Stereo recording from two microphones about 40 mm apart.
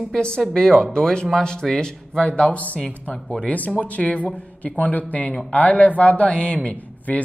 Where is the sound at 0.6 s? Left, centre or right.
Centre.